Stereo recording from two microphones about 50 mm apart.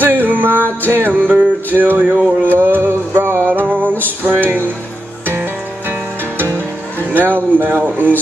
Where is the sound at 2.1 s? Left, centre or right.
Centre.